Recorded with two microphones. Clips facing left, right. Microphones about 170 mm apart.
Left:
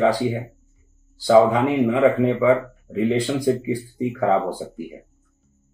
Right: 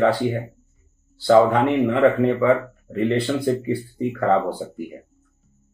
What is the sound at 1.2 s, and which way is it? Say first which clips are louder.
Speech: even; 10° left (ahead or behind).